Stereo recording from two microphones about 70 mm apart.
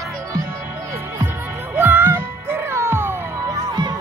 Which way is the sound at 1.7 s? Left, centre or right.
Right.